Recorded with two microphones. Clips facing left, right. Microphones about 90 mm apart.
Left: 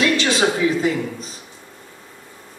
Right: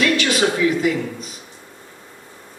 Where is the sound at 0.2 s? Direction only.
25° left (ahead or behind).